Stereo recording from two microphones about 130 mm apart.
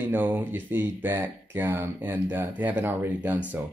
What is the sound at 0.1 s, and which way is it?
Speech, 15° right (ahead or behind).